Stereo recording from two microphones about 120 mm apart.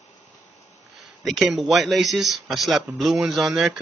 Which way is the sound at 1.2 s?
Centre (ahead or behind).